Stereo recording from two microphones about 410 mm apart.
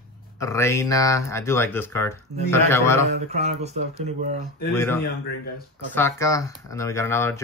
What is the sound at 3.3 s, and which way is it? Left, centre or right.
Speech, centre.